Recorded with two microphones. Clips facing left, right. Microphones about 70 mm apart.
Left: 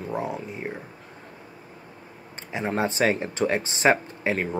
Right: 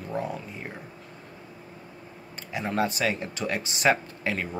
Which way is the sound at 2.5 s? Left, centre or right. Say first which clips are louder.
Left 1 dB; left.